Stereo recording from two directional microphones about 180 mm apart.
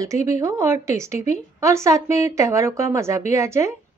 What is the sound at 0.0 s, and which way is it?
Speech, 20° right (ahead or behind).